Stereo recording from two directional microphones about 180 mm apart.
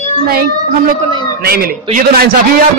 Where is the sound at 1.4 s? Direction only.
55° right (ahead or behind).